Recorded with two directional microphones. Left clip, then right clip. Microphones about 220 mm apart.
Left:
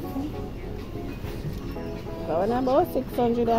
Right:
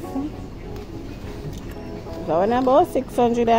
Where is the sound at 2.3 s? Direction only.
15° right (ahead or behind).